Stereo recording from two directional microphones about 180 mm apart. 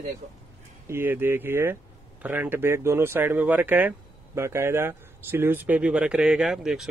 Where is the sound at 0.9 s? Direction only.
10° right (ahead or behind).